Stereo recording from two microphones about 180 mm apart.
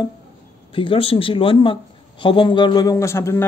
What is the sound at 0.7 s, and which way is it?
Speech, 30° left (ahead or behind).